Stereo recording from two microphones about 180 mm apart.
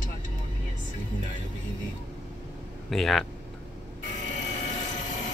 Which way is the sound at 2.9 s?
Centre (ahead or behind).